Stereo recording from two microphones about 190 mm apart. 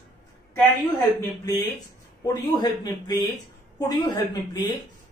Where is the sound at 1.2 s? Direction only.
20° left (ahead or behind).